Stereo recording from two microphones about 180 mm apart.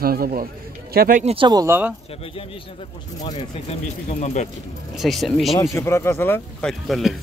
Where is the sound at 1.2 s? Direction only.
35° right (ahead or behind).